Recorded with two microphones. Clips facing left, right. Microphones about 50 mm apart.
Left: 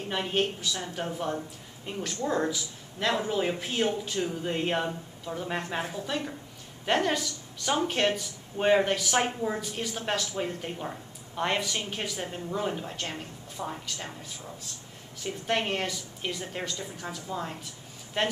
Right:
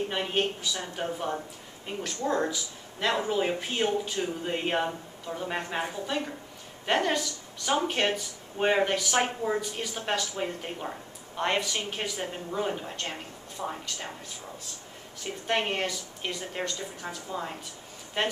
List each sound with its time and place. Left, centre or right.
0.1 s a woman's voice: centre
15.2 s speech: centre